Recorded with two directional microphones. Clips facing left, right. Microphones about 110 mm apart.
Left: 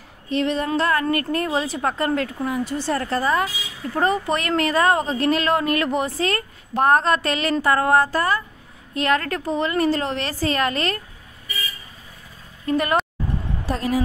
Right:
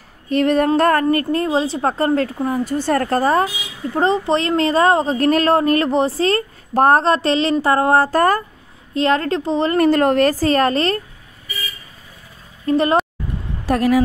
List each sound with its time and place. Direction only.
0.3 s a woman's voice: 55° right (ahead or behind)
1.1 s a woman's voice: 30° right (ahead or behind)
3.9 s speech: 25° right (ahead or behind)
5.1 s a woman's voice: 45° right (ahead or behind)
8.1 s a woman's voice: 50° right (ahead or behind)
8.9 s speech: 30° right (ahead or behind)
9.7 s a woman's voice: 55° right (ahead or behind); by 11.0 s 35° right (ahead or behind)
12.6 s a woman's voice: 30° right (ahead or behind)
13.7 s speech: 70° right (ahead or behind)